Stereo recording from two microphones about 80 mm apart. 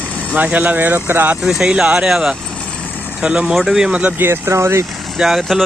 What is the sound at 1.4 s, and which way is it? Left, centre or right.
Speech, centre.